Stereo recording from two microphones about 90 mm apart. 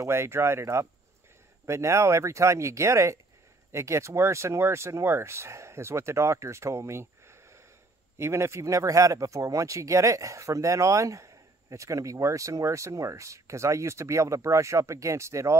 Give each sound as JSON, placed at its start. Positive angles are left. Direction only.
{"t": 0.0, "sound": "speech", "side_deg": -30}